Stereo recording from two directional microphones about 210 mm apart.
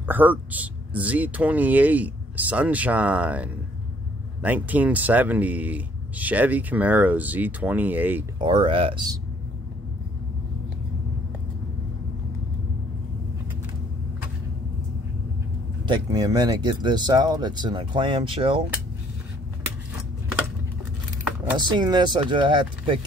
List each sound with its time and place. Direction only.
0.0 s speech: 10° right (ahead or behind)
8.4 s speech: 25° right (ahead or behind)
15.8 s speech: 20° right (ahead or behind)
21.5 s speech: 20° right (ahead or behind)